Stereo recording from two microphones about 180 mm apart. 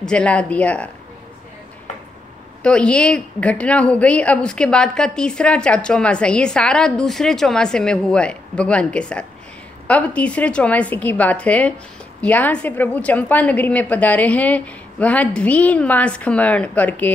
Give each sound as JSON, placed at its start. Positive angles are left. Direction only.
{"t": 0.0, "sound": "a woman's voice", "side_deg": 5}
{"t": 2.6, "sound": "a woman's voice", "side_deg": 5}